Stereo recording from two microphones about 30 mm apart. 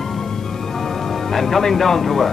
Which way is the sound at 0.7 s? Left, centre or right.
Centre.